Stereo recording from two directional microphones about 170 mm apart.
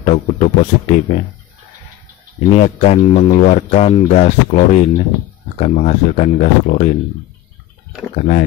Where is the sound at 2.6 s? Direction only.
35° left (ahead or behind).